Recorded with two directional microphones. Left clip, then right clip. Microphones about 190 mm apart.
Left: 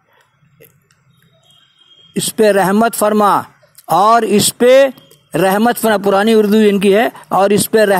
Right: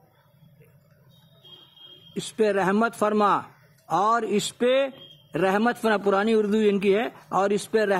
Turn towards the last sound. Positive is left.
turn(degrees=35)  # may be behind; listen again after turning